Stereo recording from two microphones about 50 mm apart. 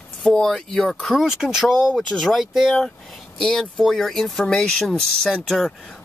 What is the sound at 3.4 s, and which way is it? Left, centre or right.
Speech, centre.